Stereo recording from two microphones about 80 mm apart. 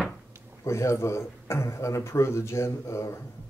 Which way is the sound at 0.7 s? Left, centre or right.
Left.